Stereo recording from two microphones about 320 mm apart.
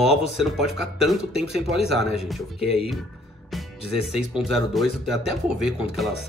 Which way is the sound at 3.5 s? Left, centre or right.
Centre.